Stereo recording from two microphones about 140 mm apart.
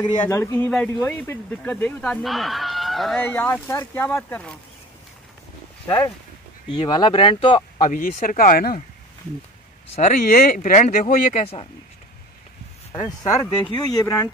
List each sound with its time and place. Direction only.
0.2 s speech: 15° left (ahead or behind)
0.7 s speech: 5° left (ahead or behind)
1.0 s speech: 15° left (ahead or behind)
2.2 s speech: centre (ahead or behind)
3.2 s speech: 15° left (ahead or behind)
4.1 s speech: 5° left (ahead or behind)
5.9 s speech: 20° left (ahead or behind)
6.7 s speech: 35° left (ahead or behind)
7.8 s speech: 70° left (ahead or behind); by 8.8 s 85° left
9.8 s speech: 50° left (ahead or behind)
10.3 s speech: 90° left
12.9 s speech: 50° left (ahead or behind)
13.5 s speech: 35° left (ahead or behind)